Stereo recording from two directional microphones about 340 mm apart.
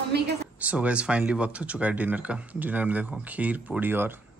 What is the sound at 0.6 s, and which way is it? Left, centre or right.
Speech, centre.